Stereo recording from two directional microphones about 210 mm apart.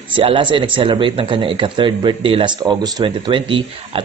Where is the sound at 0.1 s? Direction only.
25° right (ahead or behind).